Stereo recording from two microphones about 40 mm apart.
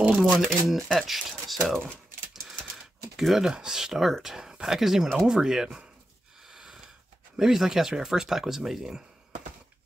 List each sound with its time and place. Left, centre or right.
0.1 s speech: centre
0.9 s speech: centre
3.2 s speech: centre
6.4 s wheeze: centre
7.3 s speech: centre